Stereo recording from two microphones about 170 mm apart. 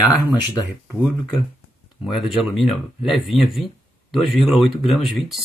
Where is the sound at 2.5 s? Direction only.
Centre (ahead or behind).